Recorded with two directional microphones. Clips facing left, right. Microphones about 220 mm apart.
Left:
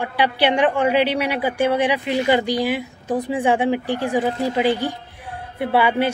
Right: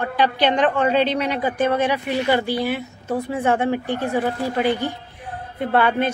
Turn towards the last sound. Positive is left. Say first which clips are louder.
# left 1 dB
turn(degrees=10)  # may be behind; listen again after turning